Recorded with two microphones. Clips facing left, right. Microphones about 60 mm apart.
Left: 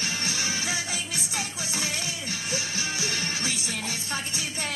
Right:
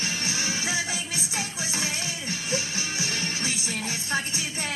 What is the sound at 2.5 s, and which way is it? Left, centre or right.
Music, right.